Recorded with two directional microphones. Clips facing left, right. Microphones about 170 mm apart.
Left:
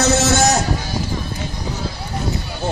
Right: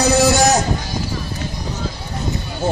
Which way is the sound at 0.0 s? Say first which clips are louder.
Right 2 dB; 15° right (ahead or behind).